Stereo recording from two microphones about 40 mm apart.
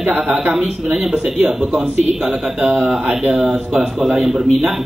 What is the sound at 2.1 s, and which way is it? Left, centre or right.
Speech, centre.